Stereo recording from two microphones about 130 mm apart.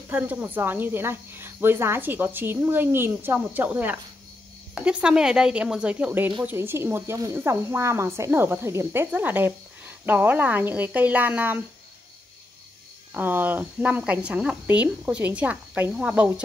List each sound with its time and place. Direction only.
0.1 s speech: 15° right (ahead or behind)
13.1 s speech: 15° right (ahead or behind)